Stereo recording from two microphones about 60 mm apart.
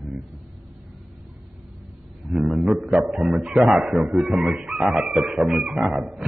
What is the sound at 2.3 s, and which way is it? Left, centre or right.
Speech, centre.